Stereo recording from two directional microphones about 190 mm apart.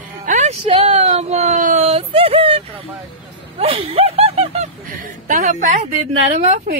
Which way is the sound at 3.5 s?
30° right (ahead or behind).